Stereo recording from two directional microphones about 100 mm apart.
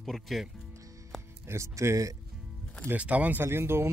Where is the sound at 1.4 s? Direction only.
30° right (ahead or behind).